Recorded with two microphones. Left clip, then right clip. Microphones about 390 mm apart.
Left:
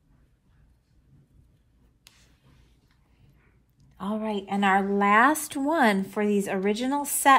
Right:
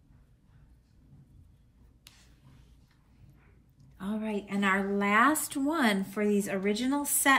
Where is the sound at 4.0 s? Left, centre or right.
Centre.